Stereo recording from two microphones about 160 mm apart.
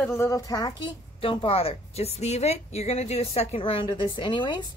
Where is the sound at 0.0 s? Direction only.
20° left (ahead or behind).